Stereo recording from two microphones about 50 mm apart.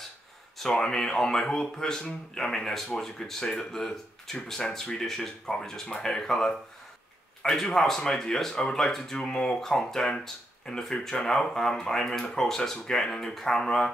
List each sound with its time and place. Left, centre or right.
0.6 s speech: centre